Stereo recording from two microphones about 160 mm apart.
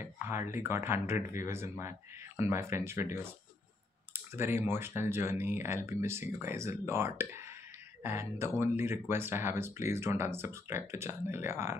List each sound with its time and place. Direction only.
0.0 s speech: 15° right (ahead or behind)